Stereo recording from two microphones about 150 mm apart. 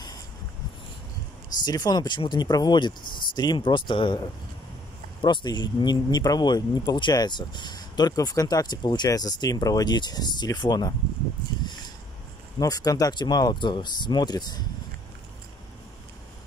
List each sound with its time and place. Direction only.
1.6 s speech: 25° left (ahead or behind)
5.2 s speech: 30° left (ahead or behind)
12.5 s speech: 25° left (ahead or behind)